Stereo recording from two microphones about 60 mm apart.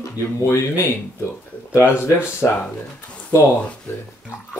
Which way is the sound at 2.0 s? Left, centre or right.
Left.